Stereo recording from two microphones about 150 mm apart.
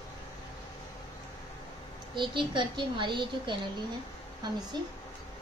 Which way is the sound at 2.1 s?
30° right (ahead or behind).